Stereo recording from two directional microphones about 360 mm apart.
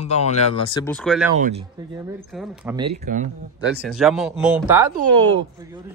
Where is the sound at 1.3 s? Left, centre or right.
Centre.